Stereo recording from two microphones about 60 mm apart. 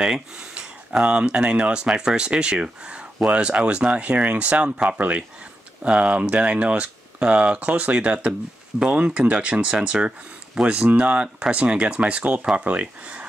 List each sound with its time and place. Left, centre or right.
0.0 s speech: centre